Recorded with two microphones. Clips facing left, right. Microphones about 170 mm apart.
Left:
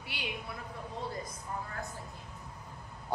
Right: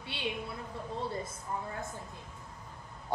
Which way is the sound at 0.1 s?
25° right (ahead or behind).